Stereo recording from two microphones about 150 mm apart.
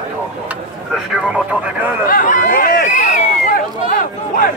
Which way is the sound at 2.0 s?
65° left (ahead or behind).